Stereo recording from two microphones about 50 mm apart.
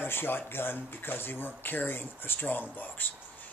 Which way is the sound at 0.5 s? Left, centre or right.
Left.